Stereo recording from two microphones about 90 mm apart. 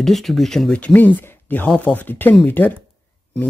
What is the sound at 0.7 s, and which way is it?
Speech, 15° left (ahead or behind).